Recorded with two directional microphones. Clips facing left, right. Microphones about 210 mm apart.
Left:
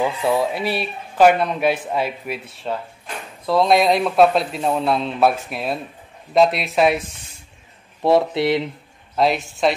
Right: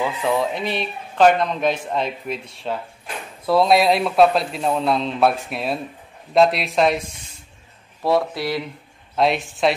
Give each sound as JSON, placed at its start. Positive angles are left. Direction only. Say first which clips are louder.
{"t": 0.0, "sound": "a man's voice", "louder": "left 2 dB", "side_deg": 10}
{"t": 8.0, "sound": "speech", "louder": "left 4 dB", "side_deg": 25}
{"t": 9.1, "sound": "a man's voice", "louder": "left 1 dB", "side_deg": 0}